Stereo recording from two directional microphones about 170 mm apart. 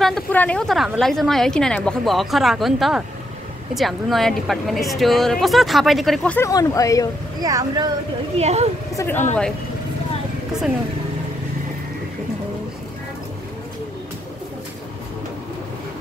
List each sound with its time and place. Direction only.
0.0 s a woman's voice: 5° left (ahead or behind)
6.3 s speech: 20° left (ahead or behind)
7.4 s speech: 20° right (ahead or behind)
8.4 s speech: 40° right (ahead or behind)
8.9 s speech: 15° left (ahead or behind)